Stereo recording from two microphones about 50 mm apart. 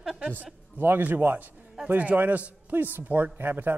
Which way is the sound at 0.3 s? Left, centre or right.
Right.